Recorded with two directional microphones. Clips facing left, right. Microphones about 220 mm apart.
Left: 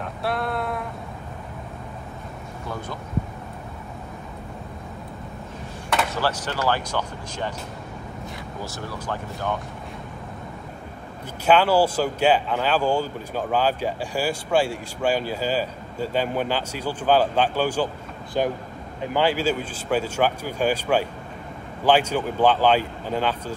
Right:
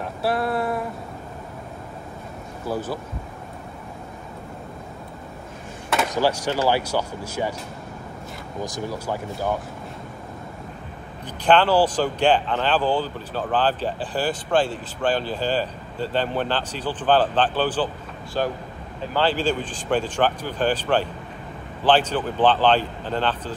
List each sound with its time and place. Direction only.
0.2 s a sound: centre (ahead or behind)
6.1 s speech: 10° right (ahead or behind)
8.6 s speech: 15° right (ahead or behind)
11.4 s speech: 10° left (ahead or behind)